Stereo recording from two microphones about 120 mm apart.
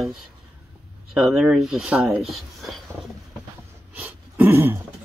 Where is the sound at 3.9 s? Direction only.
15° right (ahead or behind).